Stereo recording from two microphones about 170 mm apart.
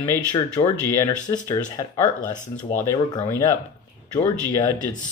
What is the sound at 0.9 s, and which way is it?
Speech, 20° left (ahead or behind).